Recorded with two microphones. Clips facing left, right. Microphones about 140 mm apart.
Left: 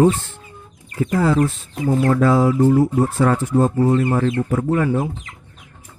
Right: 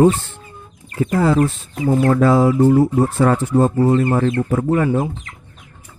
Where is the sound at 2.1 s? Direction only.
30° right (ahead or behind).